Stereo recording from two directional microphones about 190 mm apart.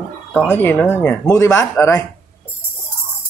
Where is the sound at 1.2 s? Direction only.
20° left (ahead or behind).